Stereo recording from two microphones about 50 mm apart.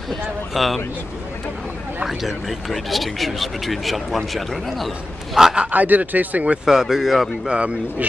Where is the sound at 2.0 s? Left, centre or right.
Centre.